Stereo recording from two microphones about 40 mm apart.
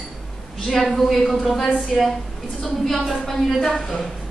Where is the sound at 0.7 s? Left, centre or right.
Centre.